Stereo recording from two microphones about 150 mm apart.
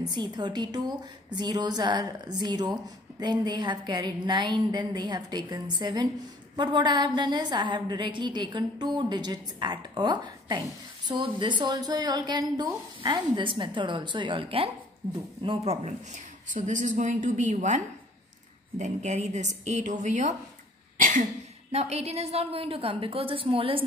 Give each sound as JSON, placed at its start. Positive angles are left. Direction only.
{"t": 0.0, "sound": "a woman's voice", "side_deg": -30}
{"t": 16.5, "sound": "a woman's voice", "side_deg": -55}
{"t": 21.7, "sound": "a woman's voice", "side_deg": -45}